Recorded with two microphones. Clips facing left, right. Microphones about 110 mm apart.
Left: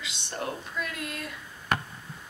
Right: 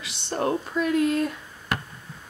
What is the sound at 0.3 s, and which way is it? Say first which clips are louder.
Speech: right 9 dB; 35° right (ahead or behind).